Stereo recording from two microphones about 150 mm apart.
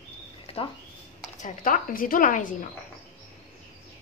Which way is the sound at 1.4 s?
65° left (ahead or behind).